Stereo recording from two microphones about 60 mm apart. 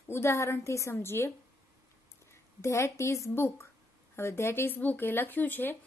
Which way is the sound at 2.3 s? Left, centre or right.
Left.